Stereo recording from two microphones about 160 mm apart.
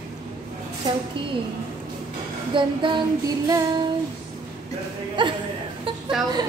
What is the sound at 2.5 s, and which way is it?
Female singing, 30° right (ahead or behind).